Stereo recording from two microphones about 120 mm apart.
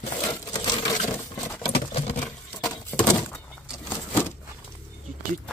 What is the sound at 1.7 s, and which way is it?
Patter, 55° left (ahead or behind).